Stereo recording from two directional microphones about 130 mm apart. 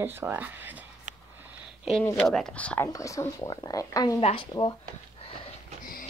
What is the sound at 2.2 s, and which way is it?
Speech, 5° left (ahead or behind).